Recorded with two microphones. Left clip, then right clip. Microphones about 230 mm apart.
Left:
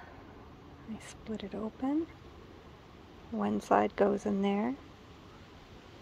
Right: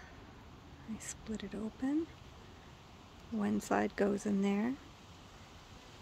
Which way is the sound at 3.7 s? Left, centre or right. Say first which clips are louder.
Left 7 dB; centre.